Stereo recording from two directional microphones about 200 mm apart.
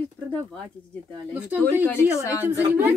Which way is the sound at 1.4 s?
10° right (ahead or behind).